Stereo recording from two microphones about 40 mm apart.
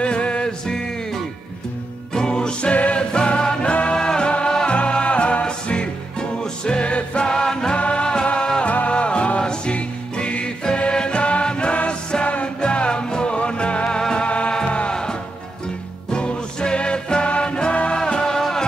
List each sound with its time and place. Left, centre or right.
0.0 s music: left
2.1 s music: centre
2.7 s music: left; by 7.7 s centre
7.7 s music: left
9.4 s music: centre
9.8 s music: left
14.2 s music: left; by 18.7 s centre